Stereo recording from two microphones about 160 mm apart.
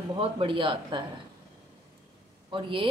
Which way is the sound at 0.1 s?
35° right (ahead or behind).